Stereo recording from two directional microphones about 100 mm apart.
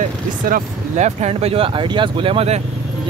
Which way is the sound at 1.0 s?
90° right.